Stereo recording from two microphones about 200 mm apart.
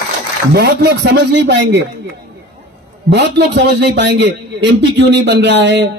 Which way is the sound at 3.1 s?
60° right (ahead or behind).